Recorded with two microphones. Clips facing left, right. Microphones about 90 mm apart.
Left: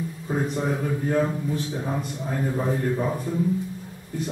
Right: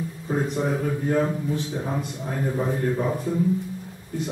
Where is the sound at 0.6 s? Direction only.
5° right (ahead or behind).